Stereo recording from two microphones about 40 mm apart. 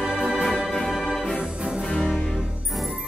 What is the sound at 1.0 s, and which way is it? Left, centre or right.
Music, centre.